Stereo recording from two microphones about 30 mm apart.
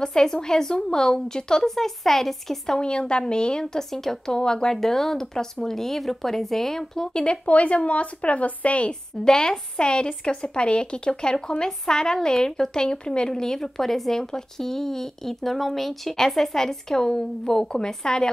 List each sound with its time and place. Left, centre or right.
0.0 s a woman's voice: left
1.8 s speech: centre
2.8 s a woman's voice: left
3.9 s speech: centre
4.4 s a woman's voice: left
4.7 s speech: centre
5.9 s speech: centre
7.2 s a woman's voice: left
9.2 s a woman's voice: left
13.3 s speech: centre
14.1 s speech: centre
16.5 s a woman's voice: centre